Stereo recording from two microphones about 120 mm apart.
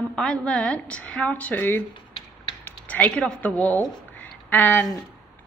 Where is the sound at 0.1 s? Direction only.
5° left (ahead or behind).